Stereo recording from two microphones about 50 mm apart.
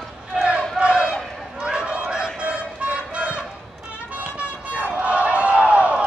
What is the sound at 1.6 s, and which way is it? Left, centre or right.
Fowl, centre.